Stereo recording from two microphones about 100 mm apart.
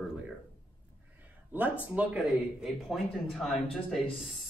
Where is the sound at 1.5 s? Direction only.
15° right (ahead or behind).